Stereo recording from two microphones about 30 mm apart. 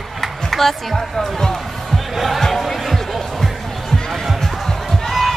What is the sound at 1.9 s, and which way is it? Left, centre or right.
Crowd, centre.